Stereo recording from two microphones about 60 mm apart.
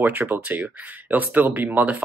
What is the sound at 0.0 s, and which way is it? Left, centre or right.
Speech, right.